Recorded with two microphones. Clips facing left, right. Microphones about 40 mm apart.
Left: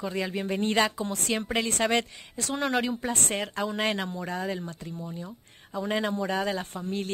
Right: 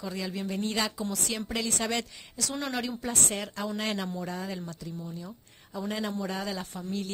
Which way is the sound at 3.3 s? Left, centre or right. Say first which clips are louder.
Left 4 dB; left.